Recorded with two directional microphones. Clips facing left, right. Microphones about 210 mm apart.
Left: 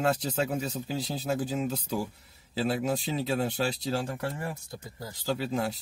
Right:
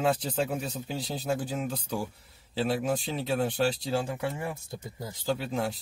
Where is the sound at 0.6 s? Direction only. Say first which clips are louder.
Left 2 dB; 5° left (ahead or behind).